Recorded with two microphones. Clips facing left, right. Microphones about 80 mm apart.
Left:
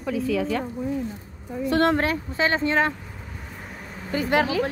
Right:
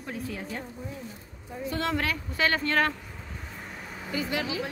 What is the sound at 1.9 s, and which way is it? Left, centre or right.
Speech, left.